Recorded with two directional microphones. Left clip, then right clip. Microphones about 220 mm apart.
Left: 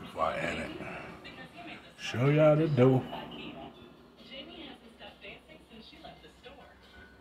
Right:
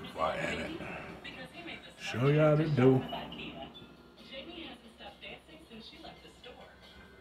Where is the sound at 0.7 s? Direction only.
15° left (ahead or behind).